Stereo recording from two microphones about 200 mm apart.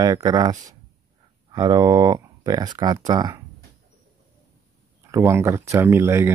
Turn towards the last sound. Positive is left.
turn(degrees=-10)  # may be behind; listen again after turning